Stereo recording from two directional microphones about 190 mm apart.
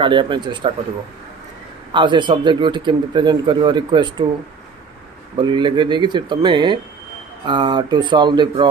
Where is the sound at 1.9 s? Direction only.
25° right (ahead or behind).